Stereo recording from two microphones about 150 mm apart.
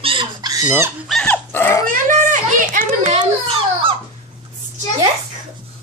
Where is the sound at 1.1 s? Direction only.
5° left (ahead or behind).